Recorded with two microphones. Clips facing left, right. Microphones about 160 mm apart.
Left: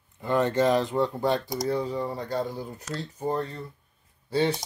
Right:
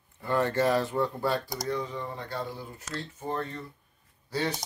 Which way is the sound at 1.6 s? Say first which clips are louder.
Left 5 dB; 35° left (ahead or behind).